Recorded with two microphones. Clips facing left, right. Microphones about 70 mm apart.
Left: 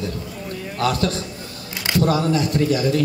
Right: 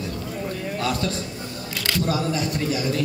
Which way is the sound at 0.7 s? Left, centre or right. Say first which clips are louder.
Left 6 dB; left.